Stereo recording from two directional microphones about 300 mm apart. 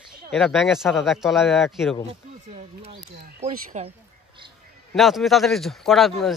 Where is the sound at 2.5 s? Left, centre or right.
Centre.